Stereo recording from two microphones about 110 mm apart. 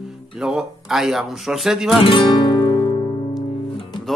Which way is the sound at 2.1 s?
55° left (ahead or behind).